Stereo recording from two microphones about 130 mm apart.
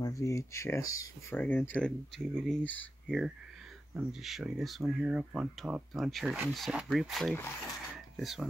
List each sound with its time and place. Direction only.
0.0 s speech: 25° left (ahead or behind)
3.9 s speech: 5° right (ahead or behind)
7.3 s speech: 20° left (ahead or behind)
8.2 s speech: centre (ahead or behind)